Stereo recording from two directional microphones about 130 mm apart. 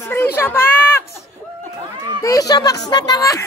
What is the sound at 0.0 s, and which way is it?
Children playing, 15° left (ahead or behind).